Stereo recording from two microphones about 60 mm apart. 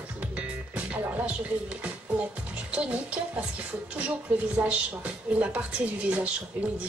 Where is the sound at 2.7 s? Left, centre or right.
Centre.